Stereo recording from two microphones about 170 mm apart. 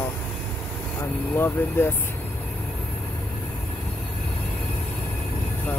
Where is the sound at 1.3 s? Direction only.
10° left (ahead or behind).